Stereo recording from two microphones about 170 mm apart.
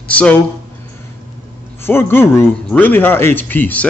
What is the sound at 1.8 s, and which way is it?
Speech, 15° left (ahead or behind).